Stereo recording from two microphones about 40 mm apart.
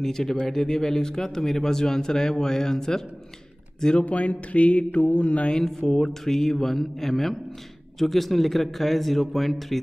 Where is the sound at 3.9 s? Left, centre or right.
Left.